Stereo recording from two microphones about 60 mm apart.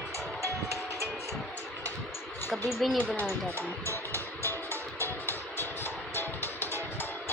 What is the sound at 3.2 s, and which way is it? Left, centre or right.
Music, left.